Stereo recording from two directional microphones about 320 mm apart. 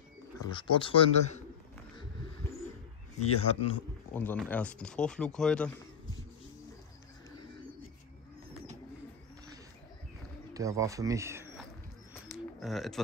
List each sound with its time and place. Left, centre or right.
0.5 s speech: centre
3.3 s speech: centre
4.1 s speech: centre
10.5 s speech: centre
12.1 s a sound: centre